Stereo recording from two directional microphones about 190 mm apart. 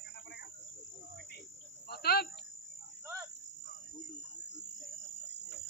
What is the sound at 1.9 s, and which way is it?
Cricket, 55° left (ahead or behind).